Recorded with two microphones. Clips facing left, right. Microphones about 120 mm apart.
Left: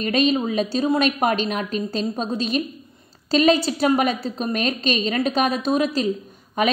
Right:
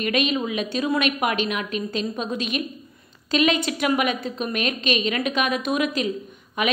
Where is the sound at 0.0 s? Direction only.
35° left (ahead or behind).